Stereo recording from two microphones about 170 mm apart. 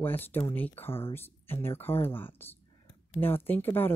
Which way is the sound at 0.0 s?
10° left (ahead or behind).